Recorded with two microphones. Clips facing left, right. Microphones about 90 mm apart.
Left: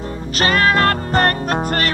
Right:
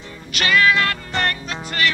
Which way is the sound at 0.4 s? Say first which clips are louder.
Left 2 dB; 40° left (ahead or behind).